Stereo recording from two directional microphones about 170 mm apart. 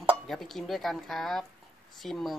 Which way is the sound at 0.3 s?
Centre (ahead or behind).